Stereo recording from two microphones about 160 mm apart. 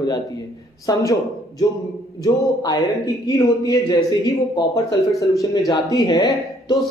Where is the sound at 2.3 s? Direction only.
20° left (ahead or behind).